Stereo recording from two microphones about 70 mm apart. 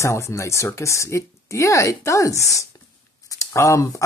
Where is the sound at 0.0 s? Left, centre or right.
Left.